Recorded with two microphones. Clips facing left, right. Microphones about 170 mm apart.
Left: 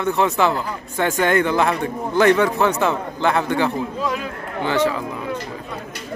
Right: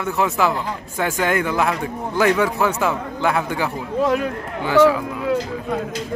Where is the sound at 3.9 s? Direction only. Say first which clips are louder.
Right 6 dB; 60° right (ahead or behind).